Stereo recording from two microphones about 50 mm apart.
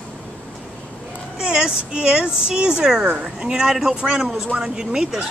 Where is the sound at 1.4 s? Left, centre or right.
Centre.